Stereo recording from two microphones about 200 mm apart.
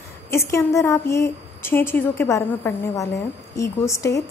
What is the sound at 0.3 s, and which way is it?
A woman's voice, 15° left (ahead or behind).